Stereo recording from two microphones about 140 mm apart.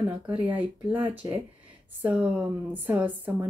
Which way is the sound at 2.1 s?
10° right (ahead or behind).